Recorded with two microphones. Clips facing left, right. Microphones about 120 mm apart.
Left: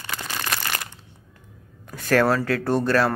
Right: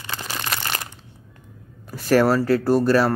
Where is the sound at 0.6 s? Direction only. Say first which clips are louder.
Right 1 dB; 30° right (ahead or behind).